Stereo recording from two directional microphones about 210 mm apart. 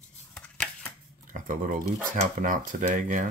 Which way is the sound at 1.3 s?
40° right (ahead or behind).